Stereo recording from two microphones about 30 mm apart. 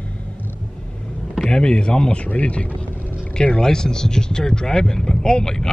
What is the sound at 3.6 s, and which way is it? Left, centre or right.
Speech, left.